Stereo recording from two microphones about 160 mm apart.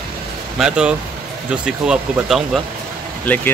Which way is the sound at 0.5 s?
5° right (ahead or behind).